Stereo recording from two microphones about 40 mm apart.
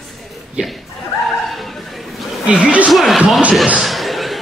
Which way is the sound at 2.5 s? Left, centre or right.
Right.